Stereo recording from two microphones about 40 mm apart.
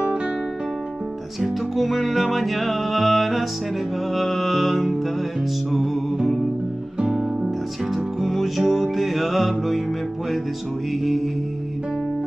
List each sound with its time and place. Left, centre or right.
1.4 s music: centre
7.0 s music: centre
7.9 s music: centre